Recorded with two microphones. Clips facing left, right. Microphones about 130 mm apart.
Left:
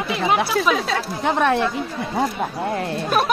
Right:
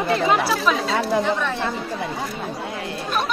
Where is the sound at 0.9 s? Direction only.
65° left (ahead or behind).